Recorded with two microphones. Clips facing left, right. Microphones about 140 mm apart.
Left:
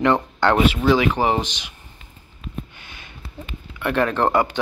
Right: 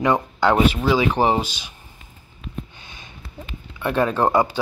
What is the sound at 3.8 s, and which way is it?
Speech, 15° right (ahead or behind).